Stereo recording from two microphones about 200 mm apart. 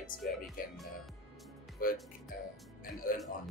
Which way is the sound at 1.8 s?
45° left (ahead or behind).